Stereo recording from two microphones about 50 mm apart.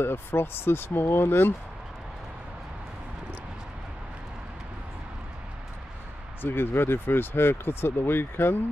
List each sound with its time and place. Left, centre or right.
0.0 s speech: left
6.4 s speech: left